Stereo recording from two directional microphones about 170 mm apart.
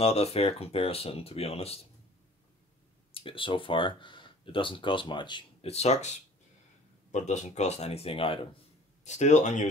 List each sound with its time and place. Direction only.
0.0 s speech: 35° left (ahead or behind)
3.1 s speech: 30° left (ahead or behind)
9.0 s speech: 45° left (ahead or behind)